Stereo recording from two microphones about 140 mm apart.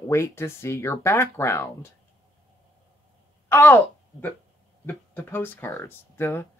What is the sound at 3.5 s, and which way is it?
A woman's voice, 15° left (ahead or behind).